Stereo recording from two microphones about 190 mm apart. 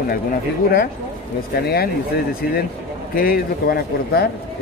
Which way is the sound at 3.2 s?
50° left (ahead or behind).